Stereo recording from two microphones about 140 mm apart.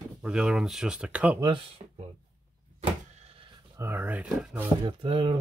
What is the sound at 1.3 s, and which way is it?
Speech, 35° right (ahead or behind).